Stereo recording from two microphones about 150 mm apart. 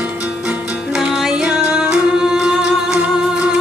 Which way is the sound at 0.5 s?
5° right (ahead or behind).